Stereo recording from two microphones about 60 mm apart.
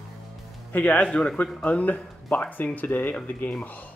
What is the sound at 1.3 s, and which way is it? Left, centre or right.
Speech, left.